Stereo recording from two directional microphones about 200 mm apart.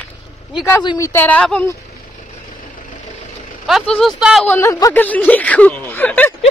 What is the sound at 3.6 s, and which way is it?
Speech, centre (ahead or behind).